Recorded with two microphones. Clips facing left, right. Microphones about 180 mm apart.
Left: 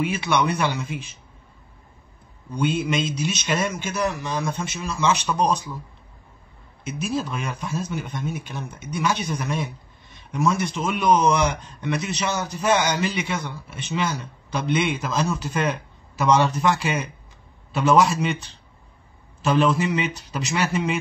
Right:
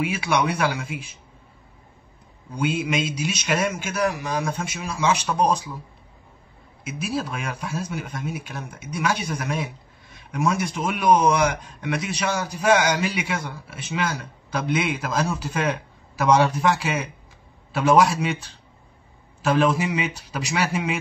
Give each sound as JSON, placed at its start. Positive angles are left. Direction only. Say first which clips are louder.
{"t": 0.0, "sound": "a man's voice", "louder": "left 1 dB", "side_deg": -10}
{"t": 2.5, "sound": "a man's voice", "louder": "left 1 dB", "side_deg": -10}
{"t": 6.8, "sound": "a man's voice", "louder": "left 1 dB", "side_deg": -10}